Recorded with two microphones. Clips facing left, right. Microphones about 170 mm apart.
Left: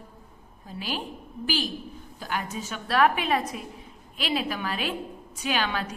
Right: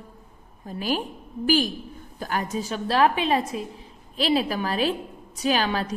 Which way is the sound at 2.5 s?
35° right (ahead or behind).